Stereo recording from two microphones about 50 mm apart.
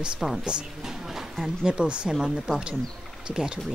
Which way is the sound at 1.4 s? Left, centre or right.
Centre.